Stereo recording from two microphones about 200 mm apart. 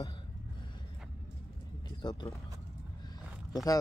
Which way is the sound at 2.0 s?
20° left (ahead or behind).